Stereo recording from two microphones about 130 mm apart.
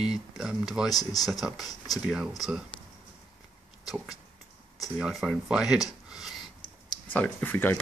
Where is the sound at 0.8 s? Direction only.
30° left (ahead or behind).